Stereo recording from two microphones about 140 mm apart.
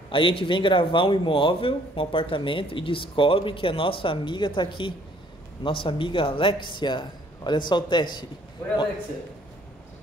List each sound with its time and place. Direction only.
0.1 s speech: 40° left (ahead or behind)